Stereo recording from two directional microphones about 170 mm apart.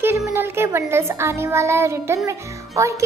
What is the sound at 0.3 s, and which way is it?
Music, 15° right (ahead or behind).